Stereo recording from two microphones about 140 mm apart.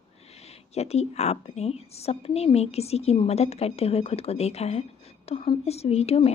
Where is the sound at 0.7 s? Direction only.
50° left (ahead or behind).